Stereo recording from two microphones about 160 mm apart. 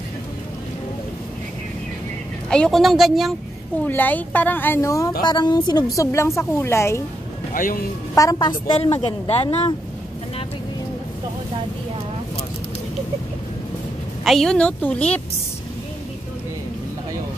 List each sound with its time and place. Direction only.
2.5 s a woman's voice: 5° left (ahead or behind)
3.8 s a woman's voice: 10° left (ahead or behind)
7.5 s speech: 60° left (ahead or behind)
8.1 s a woman's voice: 20° left (ahead or behind); by 9.8 s 35° left (ahead or behind)
14.2 s speech: centre (ahead or behind)